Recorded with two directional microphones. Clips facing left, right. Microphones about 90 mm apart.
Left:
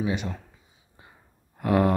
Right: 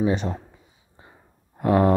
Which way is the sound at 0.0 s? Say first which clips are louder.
Right 5 dB; 35° right (ahead or behind).